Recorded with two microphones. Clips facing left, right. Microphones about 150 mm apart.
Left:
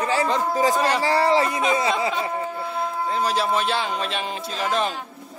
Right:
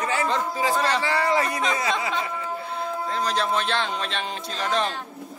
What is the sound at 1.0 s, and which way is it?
Speech, 30° left (ahead or behind).